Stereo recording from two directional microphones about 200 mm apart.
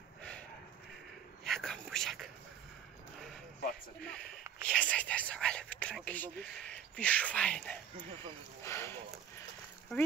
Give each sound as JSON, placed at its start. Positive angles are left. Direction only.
{"t": 1.4, "sound": "whispering", "side_deg": 0}
{"t": 4.0, "sound": "whispering", "side_deg": 5}
{"t": 8.6, "sound": "speech", "side_deg": 10}